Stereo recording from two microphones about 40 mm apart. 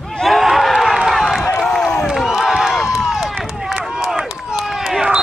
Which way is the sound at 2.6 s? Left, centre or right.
Centre.